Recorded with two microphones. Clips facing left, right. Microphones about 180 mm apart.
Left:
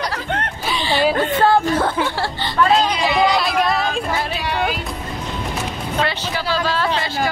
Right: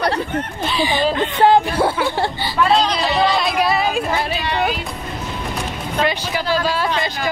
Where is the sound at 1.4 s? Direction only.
15° right (ahead or behind).